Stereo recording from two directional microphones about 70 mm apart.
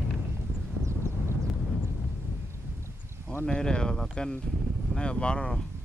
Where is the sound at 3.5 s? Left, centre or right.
Centre.